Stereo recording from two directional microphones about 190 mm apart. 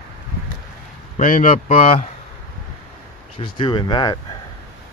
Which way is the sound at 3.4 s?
25° left (ahead or behind).